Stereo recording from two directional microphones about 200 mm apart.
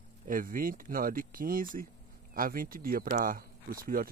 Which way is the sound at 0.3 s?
45° right (ahead or behind).